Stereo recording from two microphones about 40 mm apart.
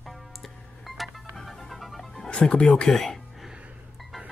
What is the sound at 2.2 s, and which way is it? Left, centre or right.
Speech, left.